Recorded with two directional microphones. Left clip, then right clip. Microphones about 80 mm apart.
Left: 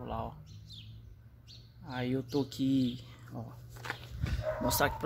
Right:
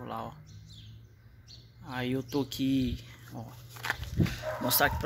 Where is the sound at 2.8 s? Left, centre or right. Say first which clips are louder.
Even; left.